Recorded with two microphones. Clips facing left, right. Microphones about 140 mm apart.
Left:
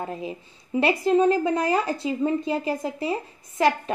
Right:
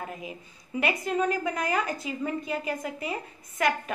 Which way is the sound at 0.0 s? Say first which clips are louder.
Left 6 dB; 30° left (ahead or behind).